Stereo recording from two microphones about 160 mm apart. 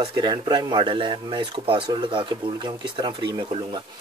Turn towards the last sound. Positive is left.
turn(degrees=-30)  # may be behind; listen again after turning